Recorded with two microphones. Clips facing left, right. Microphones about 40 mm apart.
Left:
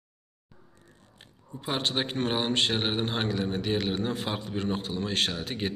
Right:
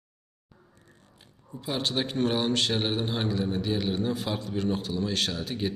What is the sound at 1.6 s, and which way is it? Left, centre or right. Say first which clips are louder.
A man's voice: even; left.